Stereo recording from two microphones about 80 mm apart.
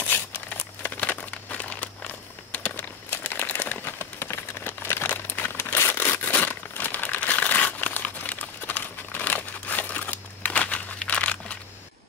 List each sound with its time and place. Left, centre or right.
0.0 s crumpling: left
2.5 s a sound: left
3.8 s crumpling: left